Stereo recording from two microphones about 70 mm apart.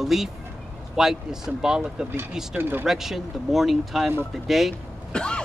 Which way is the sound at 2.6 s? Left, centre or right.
Right.